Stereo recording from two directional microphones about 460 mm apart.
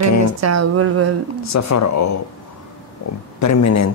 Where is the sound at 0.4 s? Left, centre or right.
Right.